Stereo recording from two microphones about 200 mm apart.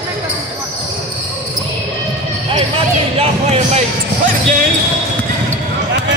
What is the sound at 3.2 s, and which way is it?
Speech, 30° right (ahead or behind).